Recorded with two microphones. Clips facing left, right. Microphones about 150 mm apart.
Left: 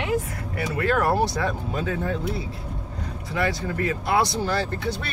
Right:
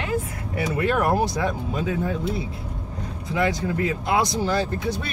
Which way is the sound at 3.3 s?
20° right (ahead or behind).